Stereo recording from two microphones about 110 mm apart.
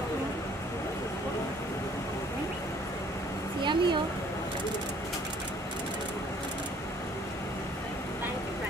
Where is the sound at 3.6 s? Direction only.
45° right (ahead or behind).